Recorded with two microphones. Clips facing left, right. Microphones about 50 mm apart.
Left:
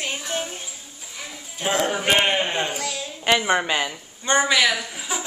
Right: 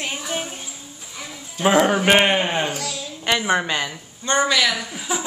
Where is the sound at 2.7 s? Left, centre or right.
Left.